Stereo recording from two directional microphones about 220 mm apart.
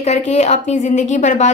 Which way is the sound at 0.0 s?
30° left (ahead or behind).